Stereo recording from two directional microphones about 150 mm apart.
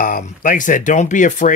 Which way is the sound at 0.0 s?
65° left (ahead or behind).